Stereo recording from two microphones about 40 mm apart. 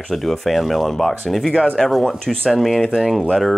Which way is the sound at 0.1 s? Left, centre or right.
Centre.